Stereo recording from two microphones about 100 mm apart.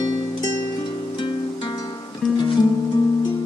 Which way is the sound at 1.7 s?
35° left (ahead or behind).